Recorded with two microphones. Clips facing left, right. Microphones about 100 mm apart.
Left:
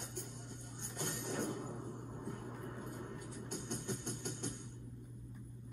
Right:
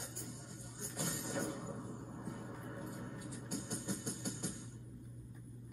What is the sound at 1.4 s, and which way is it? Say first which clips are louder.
Music: left 3 dB; 60° left (ahead or behind).